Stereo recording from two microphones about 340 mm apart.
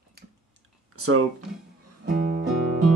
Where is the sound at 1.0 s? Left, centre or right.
Right.